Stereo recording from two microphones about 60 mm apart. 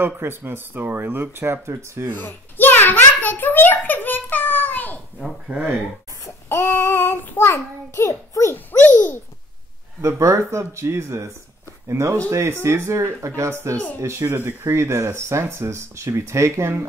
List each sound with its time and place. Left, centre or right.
0.0 s speech: right
2.1 s a child's voice: left
5.5 s speech: right
6.5 s a child's voice: left
8.7 s a child's voice: left
10.0 s speech: right